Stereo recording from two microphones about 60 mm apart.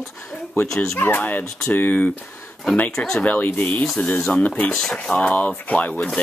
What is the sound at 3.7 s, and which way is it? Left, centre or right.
Speech, centre.